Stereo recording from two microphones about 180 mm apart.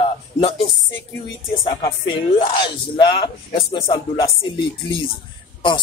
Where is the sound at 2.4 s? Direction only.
30° left (ahead or behind).